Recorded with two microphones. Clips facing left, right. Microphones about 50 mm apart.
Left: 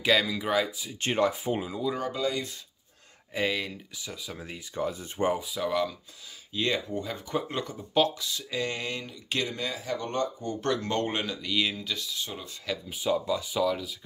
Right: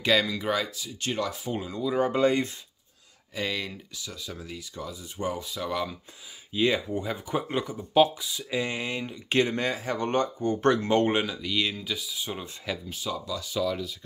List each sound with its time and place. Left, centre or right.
0.0 s speech: centre
0.7 s speech: centre
1.0 s speech: left
1.7 s speech: centre
2.1 s speech: right
3.3 s speech: centre
4.4 s speech: left
5.4 s speech: centre
6.5 s speech: centre
9.1 s speech: right
11.2 s speech: centre
11.9 s speech: centre
12.9 s speech: left
13.7 s speech: centre